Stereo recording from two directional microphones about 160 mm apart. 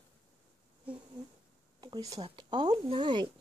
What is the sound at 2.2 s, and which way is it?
Speech, 30° right (ahead or behind).